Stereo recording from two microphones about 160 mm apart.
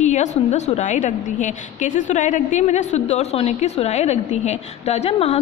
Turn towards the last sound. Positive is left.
turn(degrees=40)  # may be behind; listen again after turning